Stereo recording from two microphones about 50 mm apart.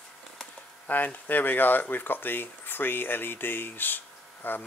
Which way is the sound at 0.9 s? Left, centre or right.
Left.